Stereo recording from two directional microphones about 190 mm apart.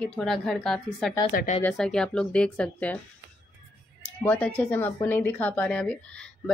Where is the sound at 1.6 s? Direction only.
5° left (ahead or behind).